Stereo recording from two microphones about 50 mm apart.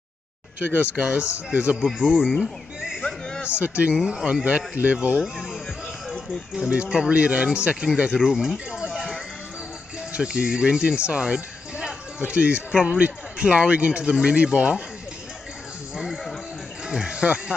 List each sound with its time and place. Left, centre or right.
0.7 s speech: right
2.0 s speech: centre
2.4 s a sound: centre
3.1 s a sound: centre
3.4 s speech: right
3.9 s speech: centre
4.5 s speech: right
5.2 s speech: centre
6.7 s speech: right; by 8.8 s centre
8.8 s music: centre
10.1 s speech: centre
16.8 s speech: centre